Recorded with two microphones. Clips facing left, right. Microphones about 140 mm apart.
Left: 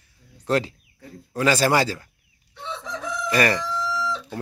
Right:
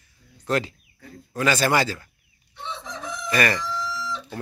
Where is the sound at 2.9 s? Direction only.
90° left.